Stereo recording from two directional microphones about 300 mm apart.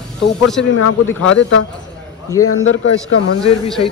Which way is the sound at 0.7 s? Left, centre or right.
Left.